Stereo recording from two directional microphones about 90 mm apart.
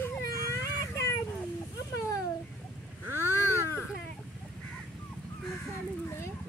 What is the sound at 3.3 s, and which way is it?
Baby cry, 30° left (ahead or behind).